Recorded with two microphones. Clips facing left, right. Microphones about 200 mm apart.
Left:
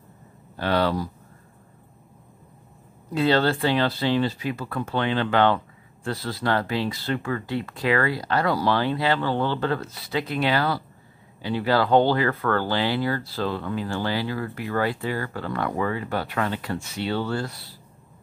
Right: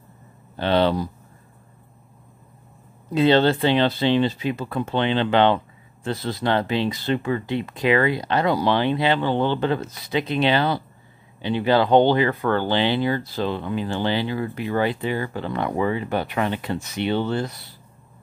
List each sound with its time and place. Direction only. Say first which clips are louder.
0.6 s speech: right 3 dB; 25° right (ahead or behind)
3.1 s speech: right 4 dB; 20° right (ahead or behind)